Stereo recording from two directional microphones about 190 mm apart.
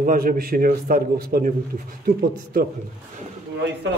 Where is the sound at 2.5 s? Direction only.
50° right (ahead or behind).